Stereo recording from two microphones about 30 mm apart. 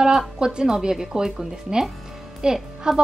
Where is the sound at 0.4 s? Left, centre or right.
Right.